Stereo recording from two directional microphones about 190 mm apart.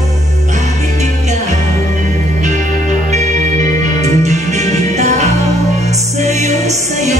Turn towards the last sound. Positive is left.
turn(degrees=-35)  # may be behind; listen again after turning